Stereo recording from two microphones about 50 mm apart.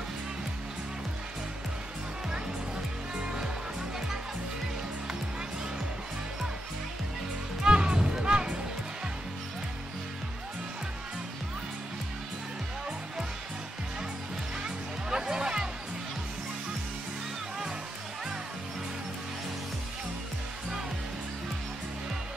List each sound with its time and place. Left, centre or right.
3.2 s music: centre
7.6 s music: centre
14.6 s music: centre